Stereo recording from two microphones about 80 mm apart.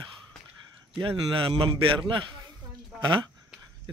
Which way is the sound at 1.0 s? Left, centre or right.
Right.